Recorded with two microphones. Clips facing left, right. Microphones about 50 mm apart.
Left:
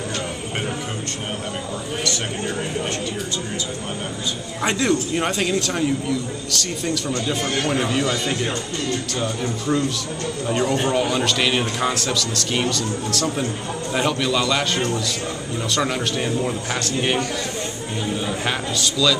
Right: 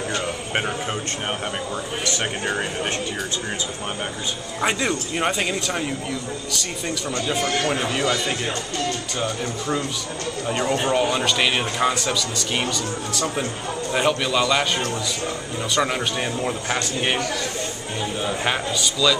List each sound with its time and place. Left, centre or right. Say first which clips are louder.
2.0 s speech: right 2 dB; right
4.6 s speech: left 2 dB; centre
15.7 s speech: right 1 dB; centre
18.2 s speech: right 1 dB; centre